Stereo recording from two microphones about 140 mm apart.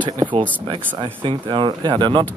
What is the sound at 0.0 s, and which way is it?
Speech, 35° right (ahead or behind).